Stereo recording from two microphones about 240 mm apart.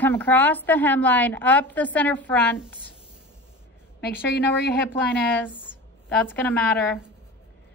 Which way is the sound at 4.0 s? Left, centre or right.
Left.